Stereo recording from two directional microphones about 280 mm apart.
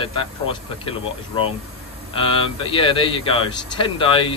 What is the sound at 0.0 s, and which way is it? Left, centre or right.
Speech, centre.